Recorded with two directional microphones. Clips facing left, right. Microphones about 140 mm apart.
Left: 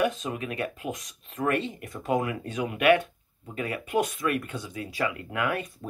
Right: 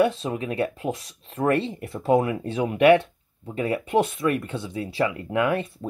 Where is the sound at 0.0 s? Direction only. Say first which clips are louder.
Right 5 dB; 30° right (ahead or behind).